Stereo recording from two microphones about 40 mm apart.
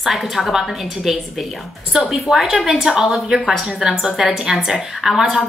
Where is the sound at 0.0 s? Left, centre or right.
Centre.